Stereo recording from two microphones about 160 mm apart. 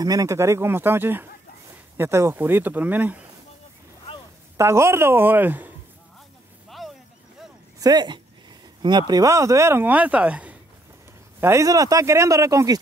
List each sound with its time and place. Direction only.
0.0 s speech: 20° right (ahead or behind)
4.6 s speech: 15° right (ahead or behind)
7.8 s speech: 25° right (ahead or behind); by 10.6 s 10° right (ahead or behind)
11.4 s speech: 20° right (ahead or behind)